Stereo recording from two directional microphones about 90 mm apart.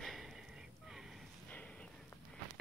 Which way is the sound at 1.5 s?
15° left (ahead or behind).